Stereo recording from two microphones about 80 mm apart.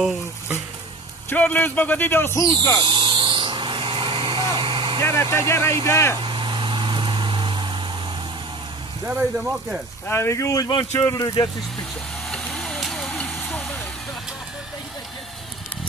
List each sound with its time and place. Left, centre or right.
1.3 s speech: left
2.3 s speech: left
2.8 s vehicle: right
4.6 s a sound: right
5.0 s speech: left
6.2 s vehicle: right
9.0 s speech: centre
10.0 s speech: left
12.3 s vehicle: centre